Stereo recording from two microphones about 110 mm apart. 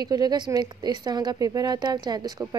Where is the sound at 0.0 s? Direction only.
40° right (ahead or behind).